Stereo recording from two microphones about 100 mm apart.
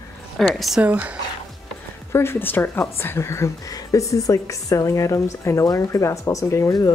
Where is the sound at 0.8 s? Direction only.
15° right (ahead or behind).